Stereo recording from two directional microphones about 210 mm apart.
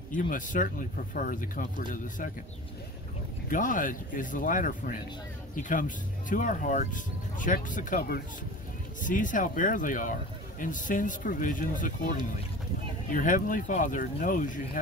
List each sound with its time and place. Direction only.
0.1 s speech: 40° left (ahead or behind)
3.4 s speech: 40° left (ahead or behind)